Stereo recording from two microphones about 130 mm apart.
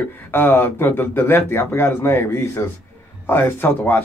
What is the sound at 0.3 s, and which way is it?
A man's voice, 15° left (ahead or behind).